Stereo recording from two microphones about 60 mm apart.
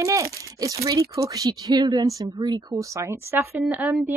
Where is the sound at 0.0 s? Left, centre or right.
Right.